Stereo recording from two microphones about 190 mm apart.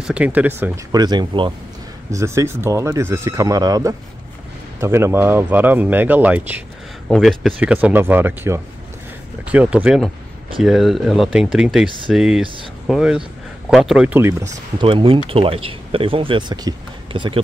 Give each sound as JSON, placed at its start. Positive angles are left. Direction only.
{"t": 0.0, "sound": "speech", "side_deg": -5}
{"t": 0.9, "sound": "speech", "side_deg": -20}
{"t": 14.8, "sound": "speech", "side_deg": -25}